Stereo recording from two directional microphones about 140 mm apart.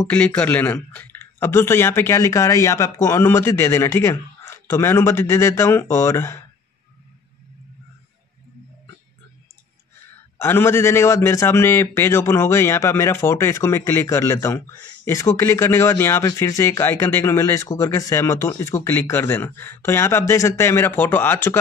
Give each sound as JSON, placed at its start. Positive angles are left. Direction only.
{"t": 0.0, "sound": "speech", "side_deg": 10}
{"t": 10.4, "sound": "speech", "side_deg": 15}